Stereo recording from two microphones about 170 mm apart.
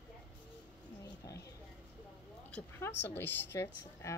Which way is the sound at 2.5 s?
10° left (ahead or behind).